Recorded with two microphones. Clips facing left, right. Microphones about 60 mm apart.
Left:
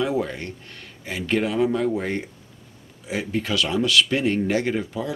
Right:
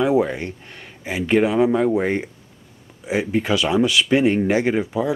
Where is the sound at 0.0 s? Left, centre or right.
Centre.